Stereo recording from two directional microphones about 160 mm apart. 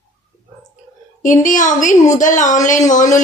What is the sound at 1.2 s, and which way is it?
A woman's voice, 55° left (ahead or behind).